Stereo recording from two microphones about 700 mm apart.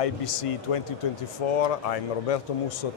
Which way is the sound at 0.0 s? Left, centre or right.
Left.